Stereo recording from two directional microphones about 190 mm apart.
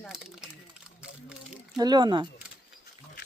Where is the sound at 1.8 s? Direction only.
20° right (ahead or behind).